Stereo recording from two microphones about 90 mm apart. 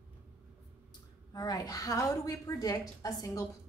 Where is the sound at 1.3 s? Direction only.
45° left (ahead or behind).